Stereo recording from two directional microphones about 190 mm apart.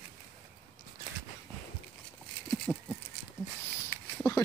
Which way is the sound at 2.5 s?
5° left (ahead or behind).